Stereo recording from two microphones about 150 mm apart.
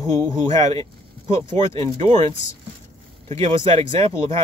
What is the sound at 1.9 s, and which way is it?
Speech, 40° right (ahead or behind).